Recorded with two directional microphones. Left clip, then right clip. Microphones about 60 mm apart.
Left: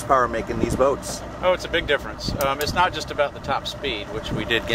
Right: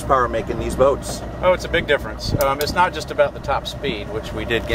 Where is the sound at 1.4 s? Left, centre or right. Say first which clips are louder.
Right 3 dB; centre.